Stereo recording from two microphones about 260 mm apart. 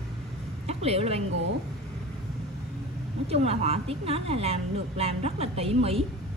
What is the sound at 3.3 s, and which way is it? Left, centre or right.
A woman's voice, right.